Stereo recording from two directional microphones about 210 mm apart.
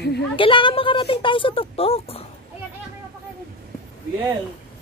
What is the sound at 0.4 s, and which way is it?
A woman's voice, 25° left (ahead or behind).